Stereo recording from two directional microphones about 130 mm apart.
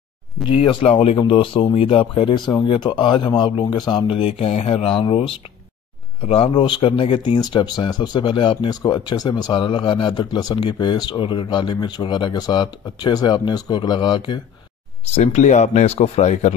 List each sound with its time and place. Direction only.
0.5 s speech: 40° left (ahead or behind)
15.1 s speech: 60° left (ahead or behind)